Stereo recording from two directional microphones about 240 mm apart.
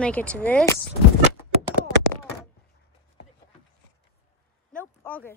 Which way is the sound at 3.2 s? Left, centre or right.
Left.